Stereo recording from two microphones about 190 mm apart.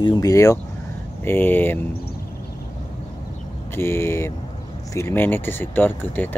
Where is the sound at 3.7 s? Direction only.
10° left (ahead or behind).